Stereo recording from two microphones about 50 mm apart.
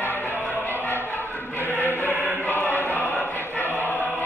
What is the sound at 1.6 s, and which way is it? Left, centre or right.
Chant, left.